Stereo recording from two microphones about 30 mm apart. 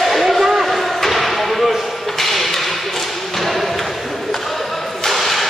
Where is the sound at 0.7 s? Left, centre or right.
Centre.